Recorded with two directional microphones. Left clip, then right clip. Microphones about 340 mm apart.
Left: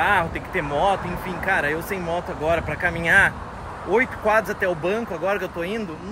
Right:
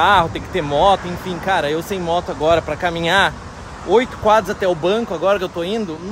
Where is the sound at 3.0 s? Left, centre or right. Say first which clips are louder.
Right 1 dB; right.